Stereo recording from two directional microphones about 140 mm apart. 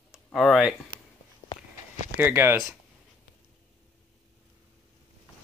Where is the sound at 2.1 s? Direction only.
15° right (ahead or behind).